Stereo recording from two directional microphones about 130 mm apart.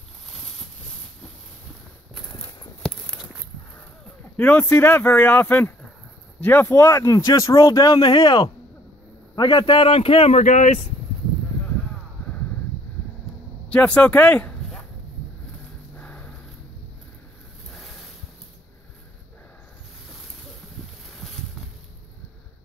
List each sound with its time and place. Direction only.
4.4 s a man's voice: 10° left (ahead or behind); by 10.8 s 65° left (ahead or behind)
13.7 s speech: 10° left (ahead or behind)
16.0 s a sound: 10° left (ahead or behind)